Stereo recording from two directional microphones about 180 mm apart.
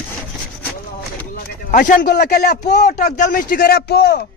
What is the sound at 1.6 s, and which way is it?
Speech, 50° left (ahead or behind).